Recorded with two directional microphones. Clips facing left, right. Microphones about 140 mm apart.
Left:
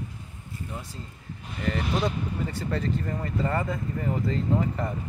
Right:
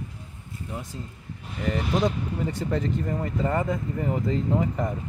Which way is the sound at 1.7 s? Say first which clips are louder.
Right 2 dB; 15° right (ahead or behind).